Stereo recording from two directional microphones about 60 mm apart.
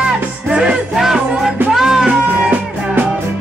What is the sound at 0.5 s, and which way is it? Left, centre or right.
Music, centre.